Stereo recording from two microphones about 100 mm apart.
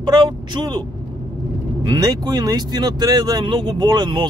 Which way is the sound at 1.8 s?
40° right (ahead or behind).